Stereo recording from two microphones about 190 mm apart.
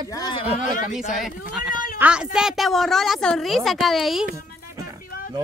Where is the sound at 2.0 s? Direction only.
5° right (ahead or behind).